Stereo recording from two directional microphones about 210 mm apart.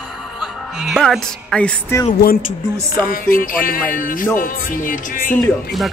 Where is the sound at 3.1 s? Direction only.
40° left (ahead or behind).